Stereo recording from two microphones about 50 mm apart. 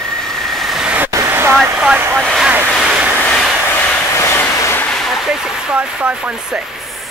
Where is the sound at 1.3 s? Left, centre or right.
Right.